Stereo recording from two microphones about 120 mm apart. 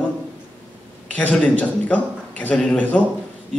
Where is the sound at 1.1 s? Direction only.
10° left (ahead or behind).